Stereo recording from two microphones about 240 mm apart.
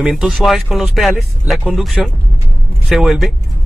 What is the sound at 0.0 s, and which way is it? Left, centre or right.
Speech, centre.